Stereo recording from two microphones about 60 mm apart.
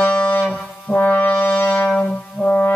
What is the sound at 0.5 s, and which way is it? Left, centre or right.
Brass instrument, left.